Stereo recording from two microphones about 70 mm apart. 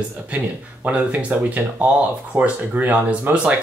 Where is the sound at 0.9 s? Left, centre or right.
Centre.